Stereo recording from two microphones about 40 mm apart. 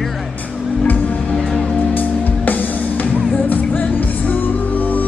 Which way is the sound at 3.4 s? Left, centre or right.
Left.